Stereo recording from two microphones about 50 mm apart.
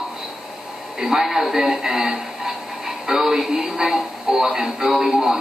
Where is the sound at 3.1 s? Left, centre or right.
Centre.